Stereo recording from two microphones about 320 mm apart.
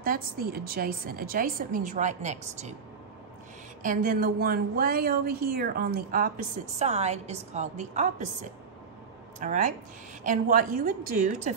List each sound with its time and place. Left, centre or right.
0.0 s a woman's voice: right
3.8 s a woman's voice: right
9.4 s a woman's voice: right